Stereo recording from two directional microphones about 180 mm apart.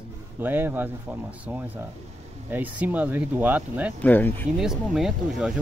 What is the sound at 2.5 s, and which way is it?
Speech, 10° right (ahead or behind).